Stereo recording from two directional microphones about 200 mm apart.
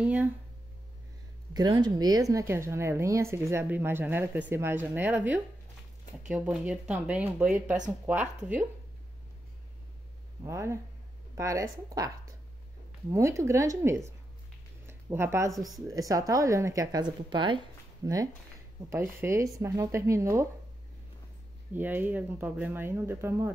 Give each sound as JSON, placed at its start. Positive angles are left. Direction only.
{"t": 0.0, "sound": "speech", "side_deg": -5}
{"t": 1.5, "sound": "speech", "side_deg": -20}
{"t": 10.4, "sound": "a woman's voice", "side_deg": -15}
{"t": 15.5, "sound": "speech", "side_deg": 0}
{"t": 15.9, "sound": "speech", "side_deg": -15}
{"t": 21.7, "sound": "speech", "side_deg": -10}